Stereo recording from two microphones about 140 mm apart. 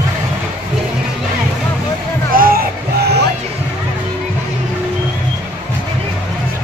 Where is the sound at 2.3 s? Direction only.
90° right.